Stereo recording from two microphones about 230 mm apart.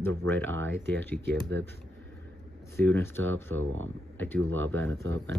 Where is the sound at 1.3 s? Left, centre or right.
Right.